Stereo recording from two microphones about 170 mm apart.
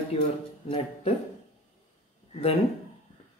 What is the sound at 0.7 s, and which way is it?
Speech, 35° left (ahead or behind).